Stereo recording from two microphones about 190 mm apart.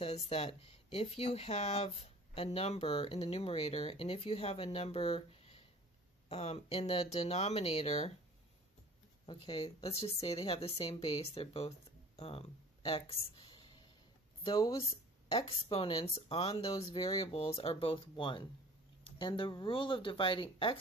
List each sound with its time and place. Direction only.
0.0 s speech: 35° left (ahead or behind)
9.2 s speech: 25° left (ahead or behind)
16.5 s speech: 20° left (ahead or behind)